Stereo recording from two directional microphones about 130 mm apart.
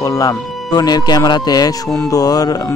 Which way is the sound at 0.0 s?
25° left (ahead or behind).